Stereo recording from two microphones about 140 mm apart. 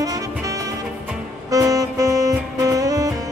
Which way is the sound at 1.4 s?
25° right (ahead or behind).